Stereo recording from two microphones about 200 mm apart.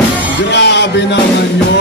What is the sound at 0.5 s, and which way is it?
Music, 60° left (ahead or behind).